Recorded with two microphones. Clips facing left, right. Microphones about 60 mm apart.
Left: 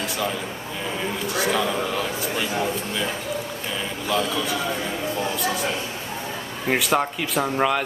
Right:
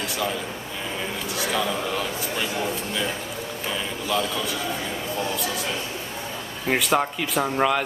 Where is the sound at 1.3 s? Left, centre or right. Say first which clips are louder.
Left 3 dB; centre.